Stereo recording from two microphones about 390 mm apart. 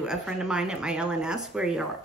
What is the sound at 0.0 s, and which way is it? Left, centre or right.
Speech, centre.